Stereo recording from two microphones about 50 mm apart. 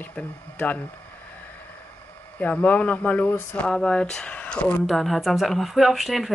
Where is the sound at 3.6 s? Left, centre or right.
Centre.